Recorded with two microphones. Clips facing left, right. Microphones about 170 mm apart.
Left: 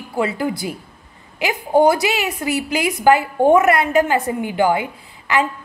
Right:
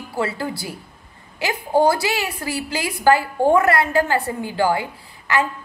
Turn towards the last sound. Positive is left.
turn(degrees=20)  # may be behind; listen again after turning